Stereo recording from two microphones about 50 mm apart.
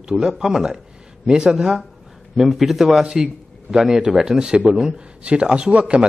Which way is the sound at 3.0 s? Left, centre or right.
Centre.